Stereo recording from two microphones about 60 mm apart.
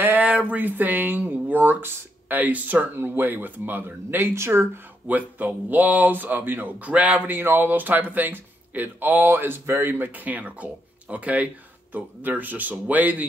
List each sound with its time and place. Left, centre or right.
0.0 s speech: right
5.0 s speech: right